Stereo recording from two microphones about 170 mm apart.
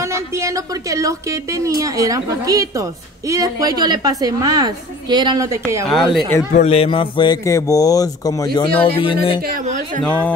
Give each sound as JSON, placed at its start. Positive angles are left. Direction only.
{"t": 0.0, "sound": "a woman's voice", "side_deg": -15}
{"t": 5.9, "sound": "speech", "side_deg": 0}
{"t": 6.5, "sound": "speech", "side_deg": 40}
{"t": 8.5, "sound": "speech", "side_deg": 30}
{"t": 9.4, "sound": "a woman's voice", "side_deg": -55}
{"t": 10.0, "sound": "speech", "side_deg": 10}